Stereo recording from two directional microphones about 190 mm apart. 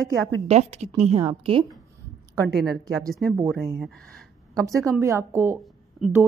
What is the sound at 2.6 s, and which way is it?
A woman's voice, centre (ahead or behind).